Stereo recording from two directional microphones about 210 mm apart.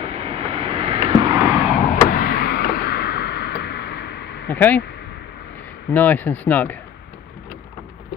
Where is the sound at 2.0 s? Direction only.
45° left (ahead or behind).